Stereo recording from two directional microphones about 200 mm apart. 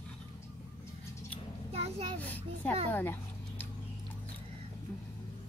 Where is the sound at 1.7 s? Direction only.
30° right (ahead or behind).